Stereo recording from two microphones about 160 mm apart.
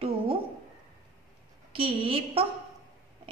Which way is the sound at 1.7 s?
35° right (ahead or behind).